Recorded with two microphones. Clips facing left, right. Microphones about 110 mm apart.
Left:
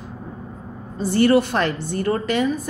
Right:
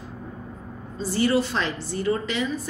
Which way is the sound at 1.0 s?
60° left (ahead or behind).